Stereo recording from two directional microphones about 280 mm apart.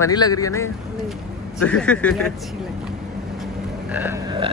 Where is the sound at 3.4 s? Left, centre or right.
Centre.